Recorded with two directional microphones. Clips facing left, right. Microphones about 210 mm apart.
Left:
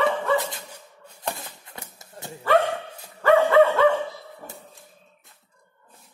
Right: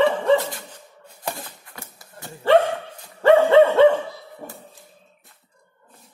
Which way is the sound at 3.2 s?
30° right (ahead or behind).